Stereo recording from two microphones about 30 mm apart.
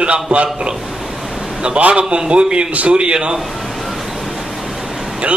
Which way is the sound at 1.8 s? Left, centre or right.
Right.